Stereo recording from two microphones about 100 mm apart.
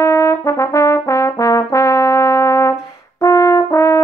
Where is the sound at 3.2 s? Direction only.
30° left (ahead or behind).